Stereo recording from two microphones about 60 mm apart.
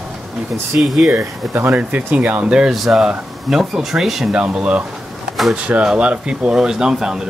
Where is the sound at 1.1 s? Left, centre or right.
Right.